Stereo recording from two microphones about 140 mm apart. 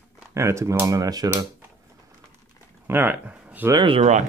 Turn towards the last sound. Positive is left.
turn(degrees=-55)  # may be behind; listen again after turning